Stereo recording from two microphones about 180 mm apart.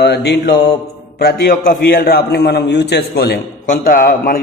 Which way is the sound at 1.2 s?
50° left (ahead or behind).